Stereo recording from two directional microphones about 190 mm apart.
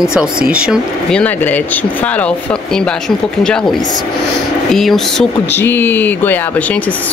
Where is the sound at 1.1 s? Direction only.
10° left (ahead or behind).